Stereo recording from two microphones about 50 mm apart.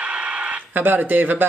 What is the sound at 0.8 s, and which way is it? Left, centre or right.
Speech, right.